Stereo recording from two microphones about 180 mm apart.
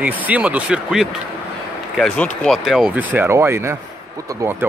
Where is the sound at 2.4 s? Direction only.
Centre (ahead or behind).